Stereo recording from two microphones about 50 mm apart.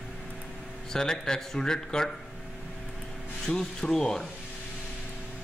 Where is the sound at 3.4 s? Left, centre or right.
Centre.